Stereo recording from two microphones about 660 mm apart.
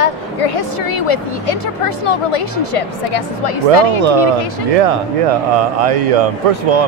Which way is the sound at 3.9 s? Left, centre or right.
Right.